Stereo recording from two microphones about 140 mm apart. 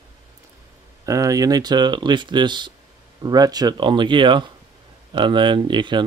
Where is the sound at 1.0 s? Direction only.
25° right (ahead or behind).